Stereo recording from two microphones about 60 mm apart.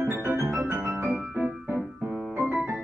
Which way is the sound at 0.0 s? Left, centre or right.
Right.